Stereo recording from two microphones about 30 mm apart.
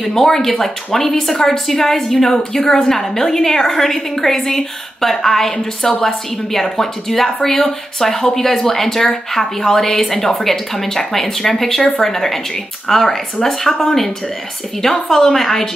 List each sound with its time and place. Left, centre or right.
0.0 s a woman's voice: centre
14.8 s a woman's voice: centre